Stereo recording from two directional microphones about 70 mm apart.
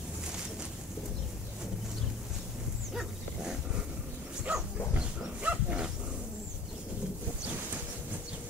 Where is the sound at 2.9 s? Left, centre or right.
Centre.